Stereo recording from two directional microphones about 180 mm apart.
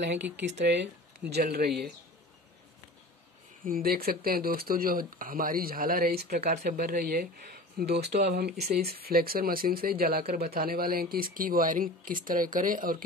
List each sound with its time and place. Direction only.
0.0 s speech: 75° right (ahead or behind); by 1.7 s 60° right (ahead or behind)
3.6 s speech: 55° right (ahead or behind)